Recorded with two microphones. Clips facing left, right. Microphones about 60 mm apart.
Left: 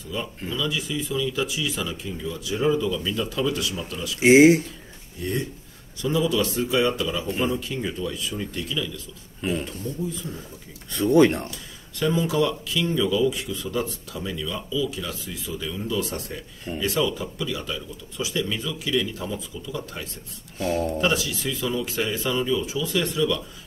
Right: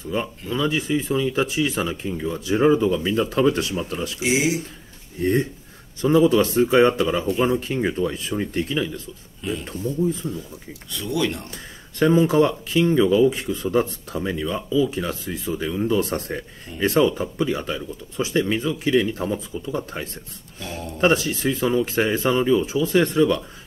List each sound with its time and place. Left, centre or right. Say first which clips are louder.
0.1 s speech: right 4 dB; right
4.2 s speech: left 9 dB; left
5.2 s speech: right 7 dB; right
9.4 s speech: left 2 dB; left
10.9 s speech: left 7 dB; left
12.0 s speech: right 6 dB; right
20.5 s speech: left 8 dB; left
21.0 s speech: right 5 dB; right